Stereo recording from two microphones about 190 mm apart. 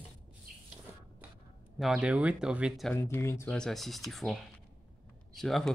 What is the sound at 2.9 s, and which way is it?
Speech, 15° left (ahead or behind).